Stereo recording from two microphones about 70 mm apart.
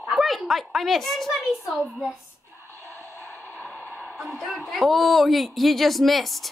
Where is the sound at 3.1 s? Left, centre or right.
Left.